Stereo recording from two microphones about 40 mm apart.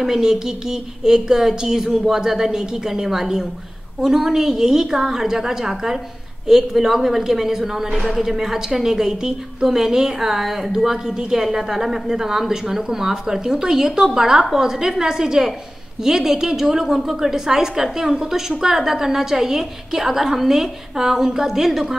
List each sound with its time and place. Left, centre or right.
0.0 s a woman's voice: centre